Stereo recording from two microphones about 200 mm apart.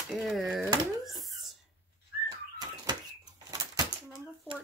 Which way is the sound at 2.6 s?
20° right (ahead or behind).